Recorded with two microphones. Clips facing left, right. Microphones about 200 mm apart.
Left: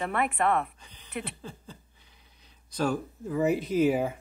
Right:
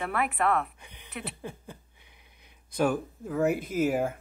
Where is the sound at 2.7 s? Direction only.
10° right (ahead or behind).